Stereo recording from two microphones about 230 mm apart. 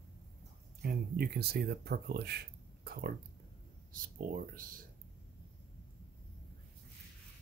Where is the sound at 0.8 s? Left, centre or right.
Right.